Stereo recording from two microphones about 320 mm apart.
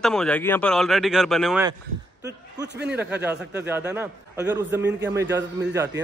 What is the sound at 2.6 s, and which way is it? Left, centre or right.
Speech, right.